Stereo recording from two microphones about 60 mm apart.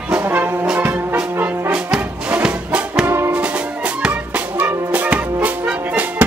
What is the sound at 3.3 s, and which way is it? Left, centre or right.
Music, centre.